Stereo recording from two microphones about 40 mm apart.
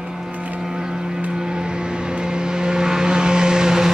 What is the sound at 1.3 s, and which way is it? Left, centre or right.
Vehicle, right.